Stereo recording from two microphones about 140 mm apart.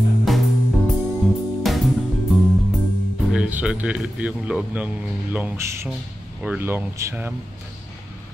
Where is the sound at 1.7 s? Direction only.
Centre (ahead or behind).